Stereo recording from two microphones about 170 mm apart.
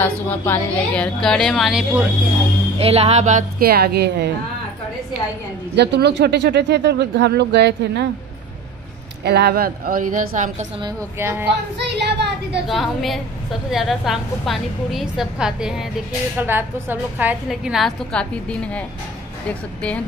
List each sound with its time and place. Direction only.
0.0 s a woman's voice: 10° left (ahead or behind)
2.8 s speech: 35° right (ahead or behind); by 4.3 s 70° right (ahead or behind)
5.8 s speech: 85° right
9.2 s a woman's voice: 75° right (ahead or behind); by 10.7 s 50° right (ahead or behind)
11.1 s speech: 15° right (ahead or behind)
11.4 s speech: 90° right
12.6 s a woman's voice: centre (ahead or behind)